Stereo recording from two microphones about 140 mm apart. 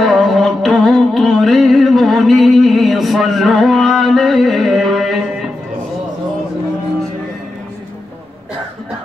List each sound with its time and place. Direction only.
0.0 s music: centre (ahead or behind)